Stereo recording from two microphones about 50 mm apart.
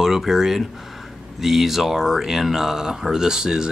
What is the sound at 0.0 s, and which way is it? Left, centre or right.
Speech, centre.